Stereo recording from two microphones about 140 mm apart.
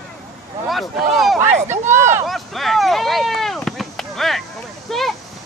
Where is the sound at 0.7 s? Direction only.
Centre (ahead or behind).